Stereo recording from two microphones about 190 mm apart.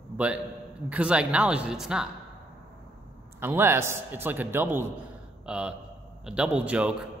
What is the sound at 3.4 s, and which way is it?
A man's voice, 10° right (ahead or behind).